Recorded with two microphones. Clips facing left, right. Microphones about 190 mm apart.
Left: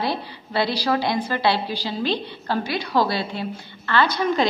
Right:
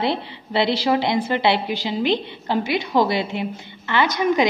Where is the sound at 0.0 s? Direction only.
25° right (ahead or behind).